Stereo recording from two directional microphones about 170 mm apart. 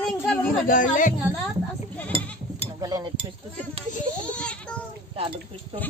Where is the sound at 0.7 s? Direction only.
50° left (ahead or behind).